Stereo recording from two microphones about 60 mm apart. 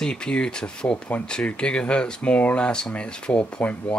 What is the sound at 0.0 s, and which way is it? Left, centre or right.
Speech, centre.